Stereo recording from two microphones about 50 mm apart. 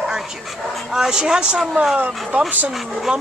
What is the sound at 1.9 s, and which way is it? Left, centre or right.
Speech, right.